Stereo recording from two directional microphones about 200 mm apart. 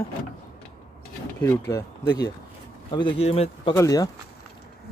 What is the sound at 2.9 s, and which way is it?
Speech, 25° left (ahead or behind).